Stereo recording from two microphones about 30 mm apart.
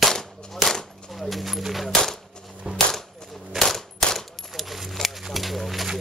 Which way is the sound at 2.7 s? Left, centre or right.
Right.